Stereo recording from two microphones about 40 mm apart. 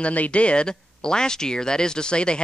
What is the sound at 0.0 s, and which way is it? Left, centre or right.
Speech, left.